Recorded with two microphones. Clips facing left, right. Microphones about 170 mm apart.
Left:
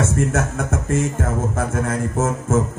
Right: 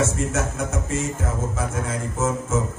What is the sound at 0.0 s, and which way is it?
A man's voice, 60° left (ahead or behind).